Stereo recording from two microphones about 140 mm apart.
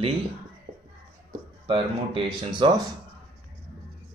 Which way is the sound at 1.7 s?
35° right (ahead or behind).